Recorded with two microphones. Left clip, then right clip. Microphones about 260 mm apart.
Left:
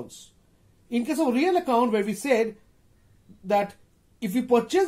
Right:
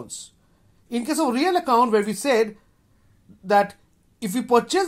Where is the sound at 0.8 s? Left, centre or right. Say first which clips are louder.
Right 2 dB; right.